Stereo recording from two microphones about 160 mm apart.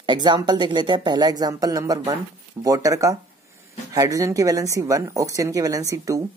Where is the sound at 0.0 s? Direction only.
30° right (ahead or behind).